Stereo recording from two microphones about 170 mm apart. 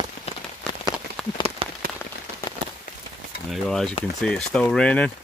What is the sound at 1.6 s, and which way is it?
Rain on surface, 35° right (ahead or behind).